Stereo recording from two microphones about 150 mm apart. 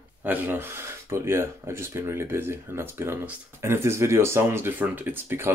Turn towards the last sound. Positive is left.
turn(degrees=-15)  # may be behind; listen again after turning